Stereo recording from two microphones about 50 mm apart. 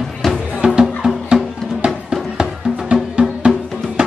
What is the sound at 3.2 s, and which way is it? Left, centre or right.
Music, right.